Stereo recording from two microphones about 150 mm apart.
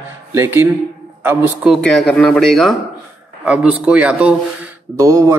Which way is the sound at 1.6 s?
Centre (ahead or behind).